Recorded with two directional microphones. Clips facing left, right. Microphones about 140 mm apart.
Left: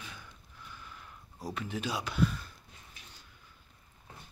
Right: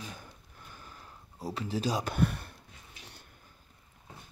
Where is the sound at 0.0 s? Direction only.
40° right (ahead or behind); by 2.5 s 60° right (ahead or behind).